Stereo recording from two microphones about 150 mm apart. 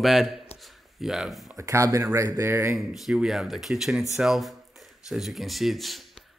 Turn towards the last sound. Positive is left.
turn(degrees=0)  # may be behind; listen again after turning